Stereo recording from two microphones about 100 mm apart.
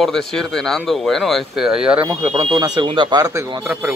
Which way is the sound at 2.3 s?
40° right (ahead or behind).